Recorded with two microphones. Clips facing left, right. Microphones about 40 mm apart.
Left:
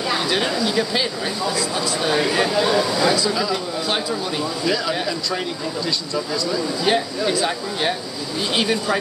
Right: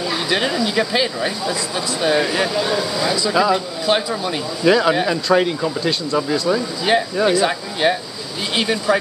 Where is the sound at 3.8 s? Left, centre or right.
Centre.